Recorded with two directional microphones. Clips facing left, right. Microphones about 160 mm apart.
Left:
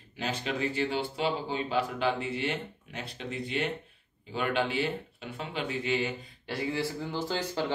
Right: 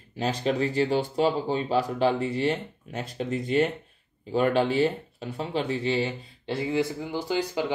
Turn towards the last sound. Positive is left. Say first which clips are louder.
# right 4 dB
turn(degrees=-15)  # may be behind; listen again after turning